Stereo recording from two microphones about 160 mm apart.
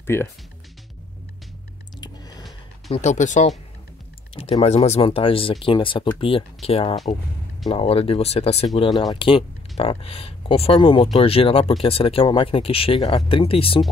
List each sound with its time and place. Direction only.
0.0 s speech: 15° left (ahead or behind)
2.0 s a sound: 25° left (ahead or behind)
2.9 s speech: 45° left (ahead or behind)
4.4 s speech: 40° left (ahead or behind)